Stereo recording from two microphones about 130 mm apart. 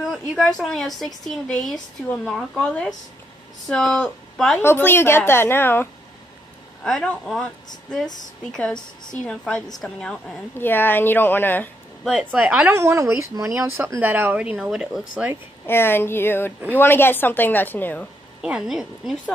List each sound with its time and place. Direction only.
0.0 s a sound: centre (ahead or behind)
0.6 s a woman's voice: centre (ahead or behind)
4.6 s a woman's voice: 15° left (ahead or behind)
6.8 s a woman's voice: 5° left (ahead or behind)
8.5 s a woman's voice: 5° left (ahead or behind)
10.5 s a woman's voice: 15° left (ahead or behind)
12.0 s speech: 5° right (ahead or behind)
12.7 s speech: 20° right (ahead or behind)
15.6 s a woman's voice: 15° left (ahead or behind)
18.4 s a woman's voice: 5° right (ahead or behind)